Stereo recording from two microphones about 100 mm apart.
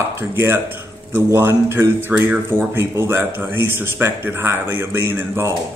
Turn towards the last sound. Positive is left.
turn(degrees=-25)  # may be behind; listen again after turning